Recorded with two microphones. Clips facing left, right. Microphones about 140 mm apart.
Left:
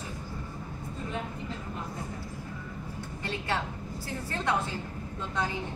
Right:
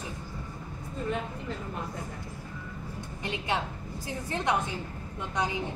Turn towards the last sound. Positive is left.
turn(degrees=-15)  # may be behind; listen again after turning